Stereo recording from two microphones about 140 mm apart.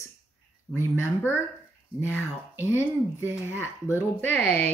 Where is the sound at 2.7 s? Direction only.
15° right (ahead or behind).